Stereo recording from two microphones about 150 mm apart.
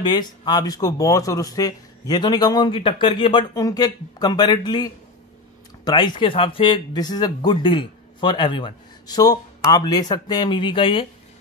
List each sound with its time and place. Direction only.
0.0 s speech: 30° left (ahead or behind)